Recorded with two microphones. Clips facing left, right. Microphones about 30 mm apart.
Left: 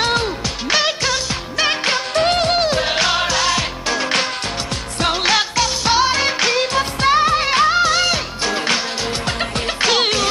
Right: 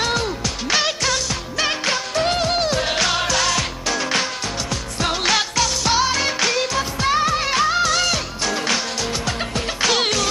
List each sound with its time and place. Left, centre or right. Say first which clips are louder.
0.0 s music: left 3 dB; left
0.7 s music: left 2 dB; centre
5.0 s music of asia: left 3 dB; centre
9.8 s music: left 2 dB; centre